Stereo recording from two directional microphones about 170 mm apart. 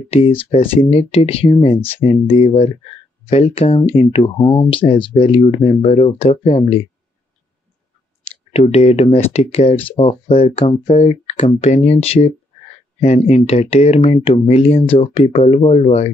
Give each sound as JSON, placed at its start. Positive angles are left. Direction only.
{"t": 0.1, "sound": "speech", "side_deg": 35}
{"t": 4.4, "sound": "speech", "side_deg": 20}
{"t": 8.5, "sound": "speech", "side_deg": 40}